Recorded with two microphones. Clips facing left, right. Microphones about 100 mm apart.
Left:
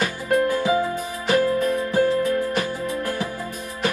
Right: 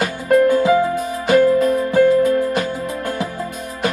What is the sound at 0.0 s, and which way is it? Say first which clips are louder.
Music: right 6 dB; 30° right (ahead or behind).